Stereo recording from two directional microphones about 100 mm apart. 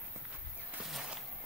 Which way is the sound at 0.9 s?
10° right (ahead or behind).